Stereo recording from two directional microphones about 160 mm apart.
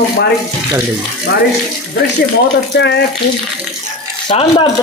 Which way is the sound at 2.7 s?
90° left.